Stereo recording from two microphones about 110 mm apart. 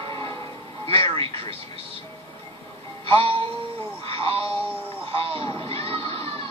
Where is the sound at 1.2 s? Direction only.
55° right (ahead or behind).